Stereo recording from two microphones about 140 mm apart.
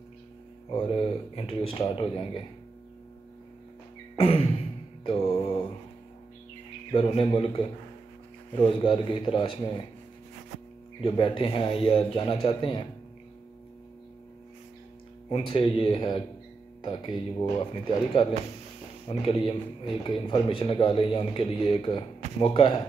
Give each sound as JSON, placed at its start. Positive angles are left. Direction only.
{"t": 0.7, "sound": "a man's voice", "side_deg": 40}
{"t": 4.2, "sound": "a sound", "side_deg": 45}
{"t": 5.0, "sound": "music", "side_deg": 40}
{"t": 6.9, "sound": "a man's voice", "side_deg": 40}
{"t": 11.0, "sound": "a man's voice", "side_deg": 40}
{"t": 15.2, "sound": "a man's voice", "side_deg": 40}